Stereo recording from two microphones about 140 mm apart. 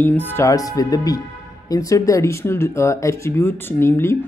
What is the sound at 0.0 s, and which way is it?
Speech, 15° left (ahead or behind).